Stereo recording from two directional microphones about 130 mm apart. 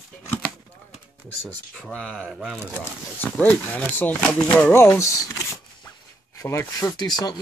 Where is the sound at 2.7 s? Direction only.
15° left (ahead or behind).